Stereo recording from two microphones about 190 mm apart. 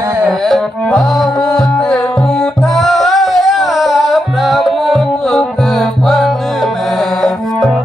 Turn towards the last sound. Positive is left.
turn(degrees=0)  # may be behind; listen again after turning